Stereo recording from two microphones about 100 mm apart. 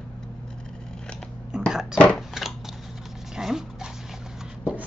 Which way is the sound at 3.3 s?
5° right (ahead or behind).